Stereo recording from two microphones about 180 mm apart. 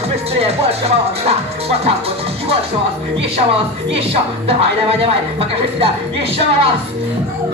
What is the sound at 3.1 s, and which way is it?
Speech, 30° right (ahead or behind).